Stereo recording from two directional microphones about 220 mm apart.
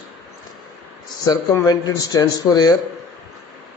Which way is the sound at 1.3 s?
15° left (ahead or behind).